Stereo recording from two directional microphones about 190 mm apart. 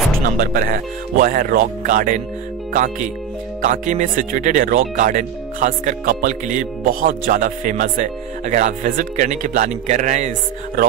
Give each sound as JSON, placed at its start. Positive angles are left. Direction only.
{"t": 0.4, "sound": "speech", "side_deg": -45}